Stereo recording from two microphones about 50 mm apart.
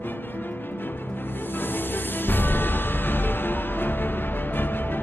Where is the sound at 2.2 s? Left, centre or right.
Left.